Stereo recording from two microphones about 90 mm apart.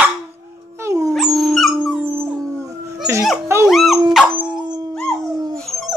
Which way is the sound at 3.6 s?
Centre (ahead or behind).